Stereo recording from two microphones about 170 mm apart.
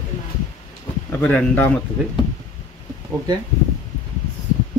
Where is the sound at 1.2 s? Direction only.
10° left (ahead or behind).